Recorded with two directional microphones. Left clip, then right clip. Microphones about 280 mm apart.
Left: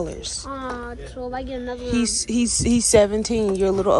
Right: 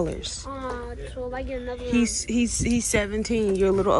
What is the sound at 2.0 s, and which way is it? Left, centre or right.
Speech, centre.